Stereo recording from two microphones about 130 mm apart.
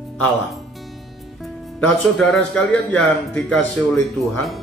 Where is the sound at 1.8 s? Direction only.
Centre (ahead or behind).